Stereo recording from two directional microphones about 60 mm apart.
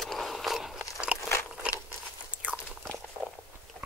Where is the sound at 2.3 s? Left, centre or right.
Right.